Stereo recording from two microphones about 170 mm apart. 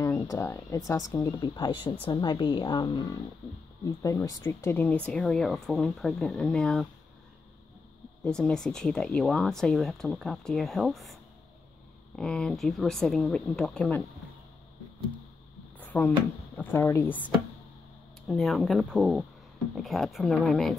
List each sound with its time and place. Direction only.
0.0 s speech: 15° left (ahead or behind)
8.2 s speech: 5° left (ahead or behind)
12.2 s speech: 5° left (ahead or behind)
15.8 s a sound: 10° left (ahead or behind)
16.5 s speech: 15° left (ahead or behind)
18.2 s speech: centre (ahead or behind)